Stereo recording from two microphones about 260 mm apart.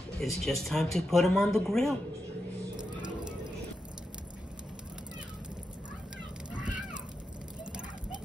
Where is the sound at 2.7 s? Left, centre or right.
Centre.